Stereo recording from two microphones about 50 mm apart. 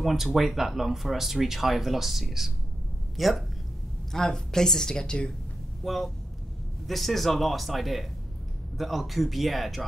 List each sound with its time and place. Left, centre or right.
0.0 s speech: centre
4.1 s a woman's voice: centre
5.9 s speech: centre